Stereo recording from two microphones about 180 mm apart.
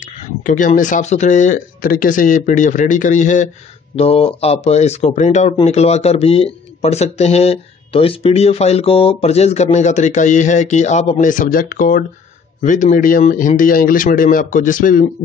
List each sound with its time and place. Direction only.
0.5 s speech: 45° left (ahead or behind)